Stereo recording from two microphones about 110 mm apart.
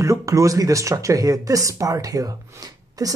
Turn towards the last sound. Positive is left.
turn(degrees=-35)  # may be behind; listen again after turning